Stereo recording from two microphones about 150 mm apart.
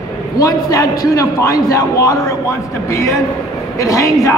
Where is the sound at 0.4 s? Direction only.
25° left (ahead or behind).